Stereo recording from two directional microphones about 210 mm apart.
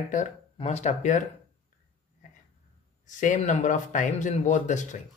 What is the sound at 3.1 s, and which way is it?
Speech, 35° left (ahead or behind).